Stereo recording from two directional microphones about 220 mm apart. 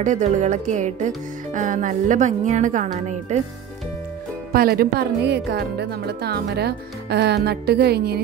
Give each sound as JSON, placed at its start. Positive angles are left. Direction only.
{"t": 0.0, "sound": "speech", "side_deg": -35}
{"t": 4.5, "sound": "speech", "side_deg": -45}